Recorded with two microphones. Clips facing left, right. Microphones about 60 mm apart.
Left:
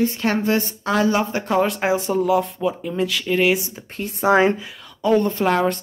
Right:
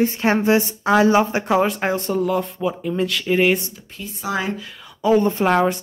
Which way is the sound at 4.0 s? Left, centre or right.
Left.